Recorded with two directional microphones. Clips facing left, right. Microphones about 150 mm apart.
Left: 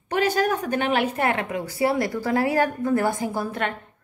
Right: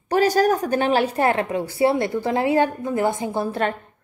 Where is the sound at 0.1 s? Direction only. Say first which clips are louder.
Right 4 dB; 40° right (ahead or behind); by 3.4 s 20° right (ahead or behind).